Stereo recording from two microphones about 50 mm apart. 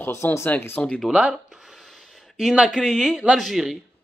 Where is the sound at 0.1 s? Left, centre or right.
Left.